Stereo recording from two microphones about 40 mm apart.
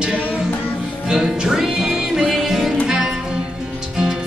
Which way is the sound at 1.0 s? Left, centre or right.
Centre.